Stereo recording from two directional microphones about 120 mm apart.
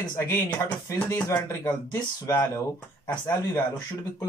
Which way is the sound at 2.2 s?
25° left (ahead or behind).